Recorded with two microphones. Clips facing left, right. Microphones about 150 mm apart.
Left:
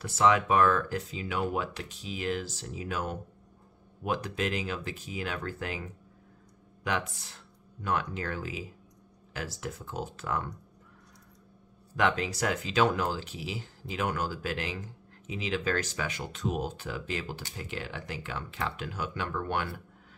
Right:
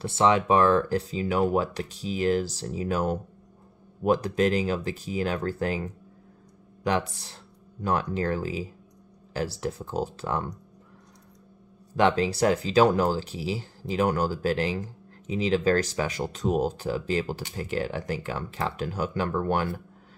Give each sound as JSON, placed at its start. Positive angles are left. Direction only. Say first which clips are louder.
{"t": 0.0, "sound": "speech", "louder": "right 3 dB", "side_deg": -30}
{"t": 11.9, "sound": "speech", "louder": "right 6 dB", "side_deg": -30}